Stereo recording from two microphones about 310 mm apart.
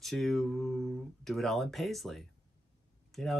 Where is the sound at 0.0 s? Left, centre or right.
Centre.